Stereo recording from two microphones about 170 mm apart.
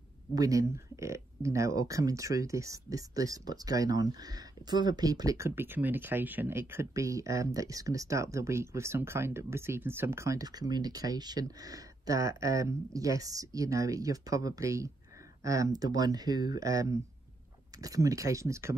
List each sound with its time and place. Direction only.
0.3 s speech: 20° right (ahead or behind)